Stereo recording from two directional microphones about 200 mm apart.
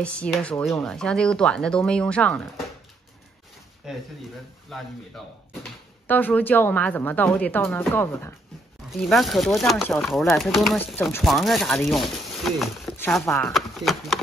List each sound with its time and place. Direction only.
0.0 s speech: 5° left (ahead or behind)
3.9 s speech: centre (ahead or behind)
9.0 s speech: centre (ahead or behind)
11.2 s speech: centre (ahead or behind)